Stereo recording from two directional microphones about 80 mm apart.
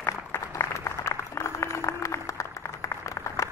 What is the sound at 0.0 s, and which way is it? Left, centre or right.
Applause, left.